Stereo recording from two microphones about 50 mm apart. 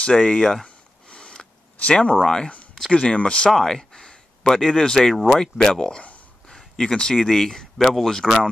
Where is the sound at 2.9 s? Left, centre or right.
Left.